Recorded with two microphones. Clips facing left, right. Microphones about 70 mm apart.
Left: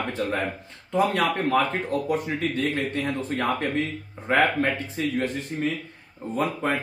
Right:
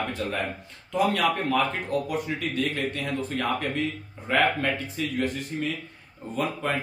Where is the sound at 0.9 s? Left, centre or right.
Left.